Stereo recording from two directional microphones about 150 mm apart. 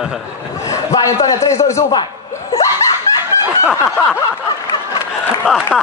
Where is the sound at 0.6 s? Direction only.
25° left (ahead or behind).